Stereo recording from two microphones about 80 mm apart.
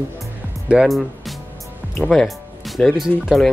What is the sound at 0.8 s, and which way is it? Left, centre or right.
Speech, centre.